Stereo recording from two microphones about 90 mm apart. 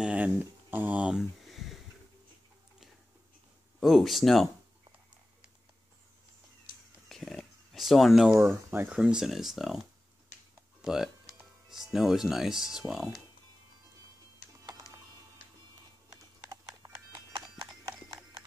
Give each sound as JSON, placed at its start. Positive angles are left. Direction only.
{"t": 0.0, "sound": "speech", "side_deg": -15}
{"t": 1.4, "sound": "a sound", "side_deg": 0}
{"t": 3.8, "sound": "speech", "side_deg": 0}
{"t": 7.1, "sound": "a sound", "side_deg": 0}
{"t": 8.4, "sound": "speech", "side_deg": -30}
{"t": 8.8, "sound": "speech", "side_deg": -10}
{"t": 10.8, "sound": "speech", "side_deg": -5}
{"t": 16.8, "sound": "horse", "side_deg": -35}
{"t": 17.3, "sound": "clip-clop", "side_deg": -50}